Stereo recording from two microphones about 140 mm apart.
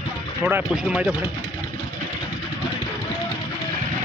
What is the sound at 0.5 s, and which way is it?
Speech, 10° right (ahead or behind).